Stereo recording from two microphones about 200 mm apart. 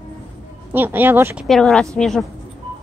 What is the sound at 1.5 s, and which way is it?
Speech, 5° left (ahead or behind).